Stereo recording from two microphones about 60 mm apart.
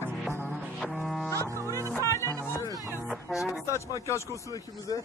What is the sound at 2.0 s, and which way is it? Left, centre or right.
Music, left.